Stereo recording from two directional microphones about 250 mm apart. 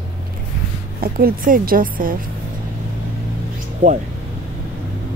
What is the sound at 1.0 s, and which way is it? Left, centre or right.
Speech, right.